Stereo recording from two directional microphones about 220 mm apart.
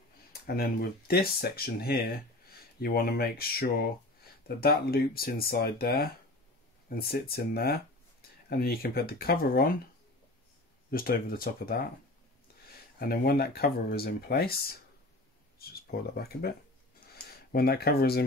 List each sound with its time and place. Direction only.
0.3 s speech: 45° left (ahead or behind)
10.9 s speech: 40° left (ahead or behind)
13.0 s speech: 40° left (ahead or behind)
17.1 s a sound: 45° left (ahead or behind)